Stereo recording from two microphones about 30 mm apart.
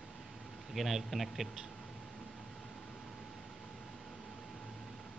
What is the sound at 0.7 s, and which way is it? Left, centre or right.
Speech, centre.